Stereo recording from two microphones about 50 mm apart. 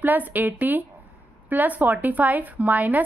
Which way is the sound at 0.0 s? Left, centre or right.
Right.